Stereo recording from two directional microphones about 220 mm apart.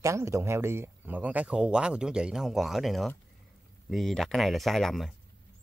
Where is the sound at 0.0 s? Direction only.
15° right (ahead or behind).